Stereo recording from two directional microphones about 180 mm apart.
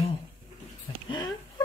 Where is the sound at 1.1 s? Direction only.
25° left (ahead or behind).